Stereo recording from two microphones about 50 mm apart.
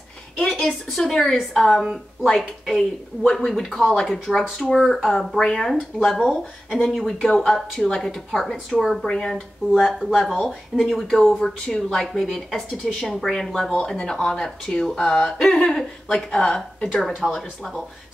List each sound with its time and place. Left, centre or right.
0.4 s a sound: centre
0.7 s a woman's voice: centre
17.2 s a woman's voice: centre